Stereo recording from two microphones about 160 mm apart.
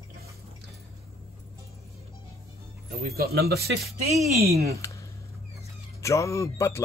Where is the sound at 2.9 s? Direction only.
70° right (ahead or behind).